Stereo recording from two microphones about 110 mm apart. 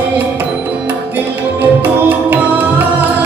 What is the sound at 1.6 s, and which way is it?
Music, 15° right (ahead or behind).